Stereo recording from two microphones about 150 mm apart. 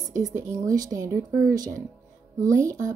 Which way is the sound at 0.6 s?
25° right (ahead or behind).